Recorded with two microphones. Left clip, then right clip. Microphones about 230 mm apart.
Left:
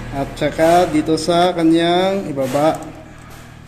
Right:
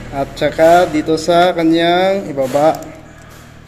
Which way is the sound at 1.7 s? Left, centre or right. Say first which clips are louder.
Right 3 dB; left.